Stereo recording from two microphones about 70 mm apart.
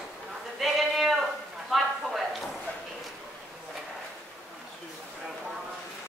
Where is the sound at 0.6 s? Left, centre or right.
Centre.